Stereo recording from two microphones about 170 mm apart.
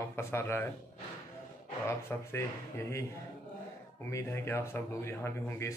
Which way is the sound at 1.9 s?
15° left (ahead or behind).